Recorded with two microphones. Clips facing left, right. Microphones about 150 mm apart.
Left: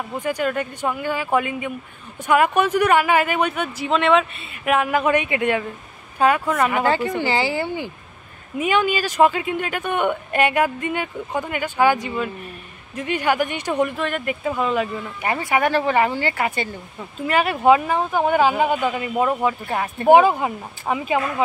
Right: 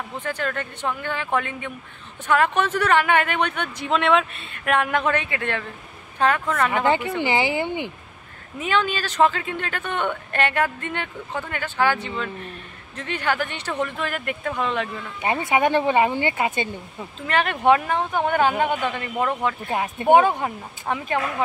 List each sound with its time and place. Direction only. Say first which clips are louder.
0.2 s speech: left 5 dB; 10° left (ahead or behind)
7.2 s speech: left 1 dB; 15° right (ahead or behind)
8.5 s speech: left 4 dB; 10° left (ahead or behind)
13.9 s speech: left 3 dB; centre (ahead or behind)
15.2 s speech: even; 20° right (ahead or behind)
17.3 s speech: left 3 dB; 5° left (ahead or behind)
19.7 s speech: left 1 dB; 15° right (ahead or behind)
20.1 s speech: left 3 dB; 5° left (ahead or behind)